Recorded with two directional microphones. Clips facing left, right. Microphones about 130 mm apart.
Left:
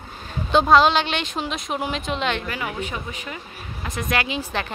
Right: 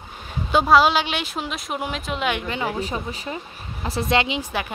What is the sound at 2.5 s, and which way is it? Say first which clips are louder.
A woman's voice: right 3 dB; 30° right (ahead or behind).